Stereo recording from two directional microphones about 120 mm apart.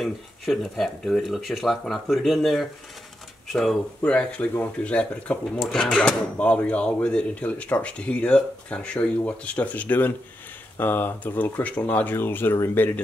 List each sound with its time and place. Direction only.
0.0 s speech: centre (ahead or behind); by 13.0 s 15° left (ahead or behind)